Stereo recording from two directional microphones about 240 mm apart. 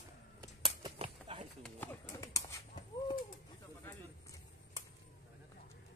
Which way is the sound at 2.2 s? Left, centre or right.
Centre.